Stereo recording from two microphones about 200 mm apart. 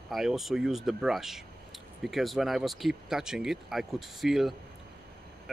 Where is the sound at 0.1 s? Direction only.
Centre (ahead or behind).